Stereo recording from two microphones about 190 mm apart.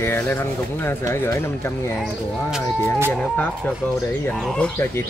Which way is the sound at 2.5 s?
10° right (ahead or behind).